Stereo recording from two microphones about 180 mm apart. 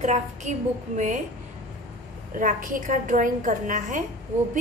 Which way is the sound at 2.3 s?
50° right (ahead or behind).